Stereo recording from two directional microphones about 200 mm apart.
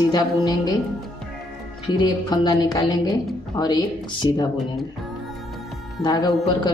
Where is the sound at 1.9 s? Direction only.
20° left (ahead or behind).